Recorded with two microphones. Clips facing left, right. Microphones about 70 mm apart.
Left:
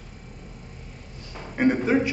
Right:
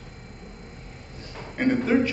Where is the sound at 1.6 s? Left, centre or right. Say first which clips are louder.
Left 1 dB; centre.